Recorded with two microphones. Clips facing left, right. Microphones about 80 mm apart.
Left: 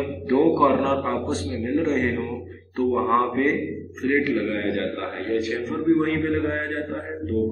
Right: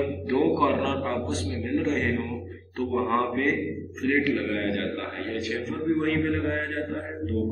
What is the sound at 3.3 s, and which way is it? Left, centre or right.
A man's voice, centre.